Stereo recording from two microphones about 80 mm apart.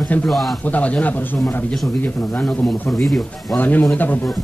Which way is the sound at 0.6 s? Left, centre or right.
Centre.